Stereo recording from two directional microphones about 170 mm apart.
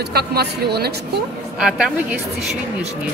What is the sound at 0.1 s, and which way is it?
Speech, 70° right (ahead or behind).